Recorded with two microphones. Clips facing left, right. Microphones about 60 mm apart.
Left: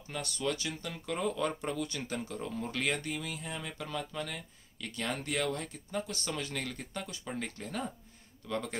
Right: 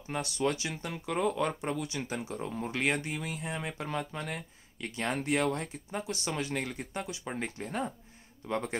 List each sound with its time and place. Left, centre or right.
0.1 s speech: right